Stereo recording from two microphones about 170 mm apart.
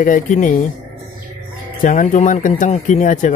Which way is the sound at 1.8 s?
50° left (ahead or behind).